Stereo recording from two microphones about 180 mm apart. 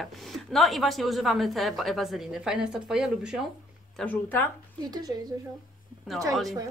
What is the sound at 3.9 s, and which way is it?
Speech, 10° left (ahead or behind).